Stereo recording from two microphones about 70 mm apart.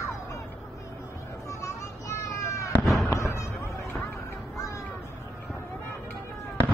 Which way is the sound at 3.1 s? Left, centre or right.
Left.